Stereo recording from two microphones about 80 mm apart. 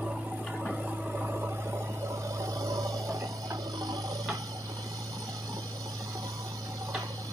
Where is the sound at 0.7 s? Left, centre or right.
Centre; by 4.2 s right.